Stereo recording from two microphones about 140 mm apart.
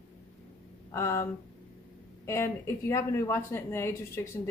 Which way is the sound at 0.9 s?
20° left (ahead or behind).